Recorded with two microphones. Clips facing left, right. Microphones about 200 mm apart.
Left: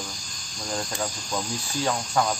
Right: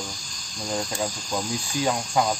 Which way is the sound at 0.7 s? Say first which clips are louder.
Right 2 dB; 10° right (ahead or behind).